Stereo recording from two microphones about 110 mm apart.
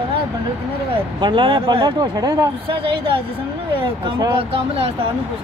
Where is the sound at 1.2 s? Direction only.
50° right (ahead or behind).